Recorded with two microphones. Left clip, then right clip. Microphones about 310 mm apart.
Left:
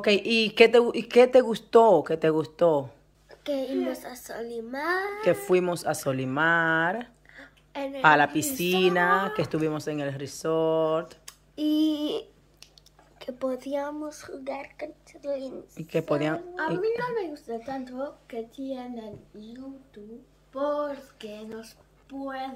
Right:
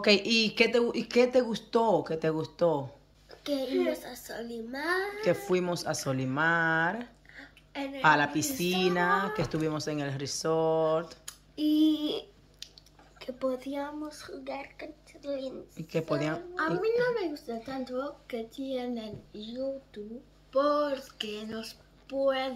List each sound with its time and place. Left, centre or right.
0.0 s speech: centre
7.3 s a sound: centre
8.0 s speech: centre
11.5 s speech: centre
13.2 s speech: centre
15.7 s speech: centre